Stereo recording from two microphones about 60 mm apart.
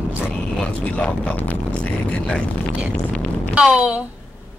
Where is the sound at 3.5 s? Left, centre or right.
Centre.